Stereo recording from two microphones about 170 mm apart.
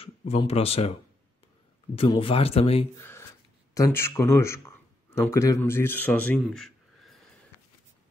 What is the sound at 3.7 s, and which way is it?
Speech, 15° left (ahead or behind).